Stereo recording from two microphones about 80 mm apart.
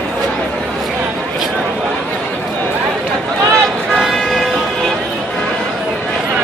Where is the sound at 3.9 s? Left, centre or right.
Centre.